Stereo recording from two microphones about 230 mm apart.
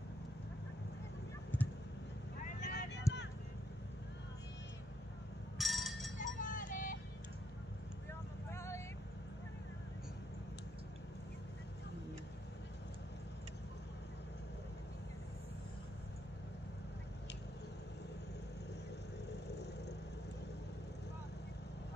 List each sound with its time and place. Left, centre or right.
2.4 s vehicle: left
3.1 s vehicle: centre
5.6 s a sound: centre
6.1 s vehicle: left
8.1 s vehicle: centre
19.4 s vehicle: left